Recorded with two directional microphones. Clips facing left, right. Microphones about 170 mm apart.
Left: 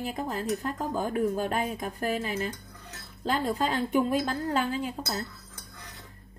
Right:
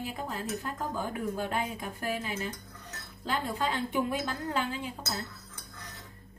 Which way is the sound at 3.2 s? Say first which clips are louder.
Left 4 dB; 40° left (ahead or behind).